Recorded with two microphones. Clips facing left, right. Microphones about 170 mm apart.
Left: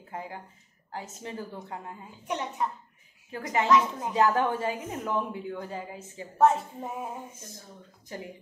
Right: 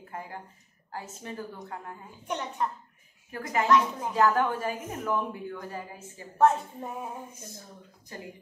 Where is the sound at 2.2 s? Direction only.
Centre (ahead or behind).